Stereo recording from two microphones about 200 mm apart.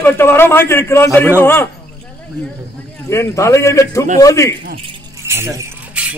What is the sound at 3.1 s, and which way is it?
A man's voice, 15° left (ahead or behind).